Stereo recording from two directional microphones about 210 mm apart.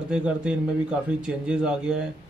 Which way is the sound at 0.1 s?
5° right (ahead or behind).